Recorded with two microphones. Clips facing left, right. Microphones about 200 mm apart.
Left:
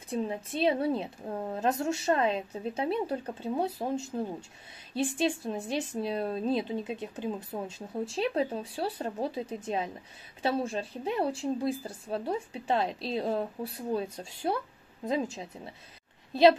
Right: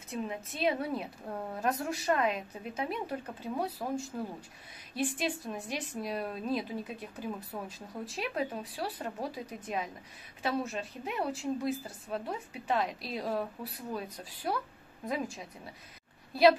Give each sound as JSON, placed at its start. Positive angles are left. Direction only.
{"t": 0.1, "sound": "a woman's voice", "side_deg": 30}